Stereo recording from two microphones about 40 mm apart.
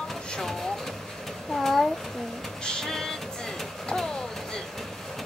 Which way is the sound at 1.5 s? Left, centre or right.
Centre.